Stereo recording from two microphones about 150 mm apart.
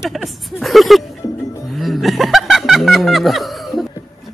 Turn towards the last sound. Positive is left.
turn(degrees=0)  # may be behind; listen again after turning